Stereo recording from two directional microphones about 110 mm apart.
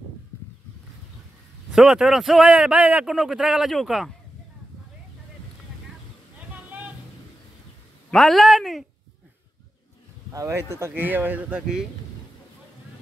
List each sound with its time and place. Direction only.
1.7 s a man's voice: 5° right (ahead or behind)
8.1 s a man's voice: centre (ahead or behind)
10.3 s speech: 25° right (ahead or behind)